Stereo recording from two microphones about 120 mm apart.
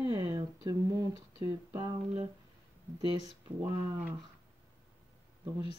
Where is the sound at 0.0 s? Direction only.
30° right (ahead or behind).